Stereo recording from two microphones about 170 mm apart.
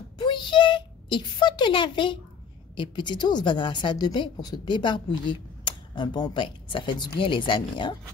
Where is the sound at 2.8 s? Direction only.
25° left (ahead or behind).